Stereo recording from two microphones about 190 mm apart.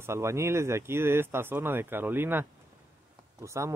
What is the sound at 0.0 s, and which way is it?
Speech, 15° right (ahead or behind).